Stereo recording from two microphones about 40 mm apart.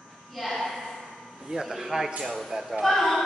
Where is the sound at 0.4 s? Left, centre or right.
Centre.